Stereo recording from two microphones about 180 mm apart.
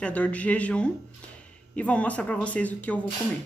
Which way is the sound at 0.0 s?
10° left (ahead or behind).